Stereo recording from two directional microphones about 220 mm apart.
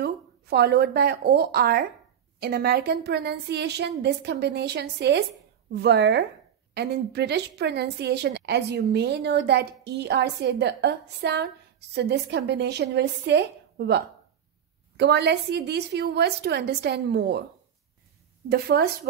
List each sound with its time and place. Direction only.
0.0 s a woman's voice: 45° right (ahead or behind)
18.5 s speech: 45° right (ahead or behind)